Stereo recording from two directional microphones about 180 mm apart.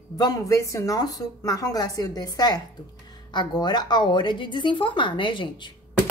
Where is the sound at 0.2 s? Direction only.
20° left (ahead or behind).